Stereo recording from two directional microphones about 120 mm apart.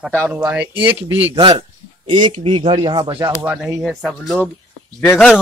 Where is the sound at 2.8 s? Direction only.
30° right (ahead or behind).